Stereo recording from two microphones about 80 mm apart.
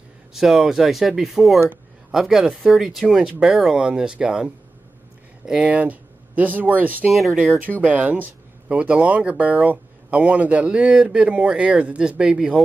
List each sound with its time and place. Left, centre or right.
0.3 s speech: centre; by 7.1 s right
7.1 s speech: centre
7.8 s speech: centre